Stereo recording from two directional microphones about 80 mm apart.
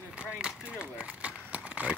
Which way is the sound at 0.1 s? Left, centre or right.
Centre.